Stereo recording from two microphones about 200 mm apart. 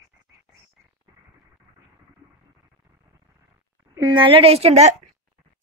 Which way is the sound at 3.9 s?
20° right (ahead or behind).